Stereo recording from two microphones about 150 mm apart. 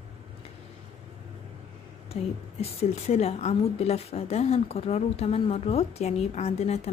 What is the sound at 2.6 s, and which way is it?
A woman's voice, 45° left (ahead or behind).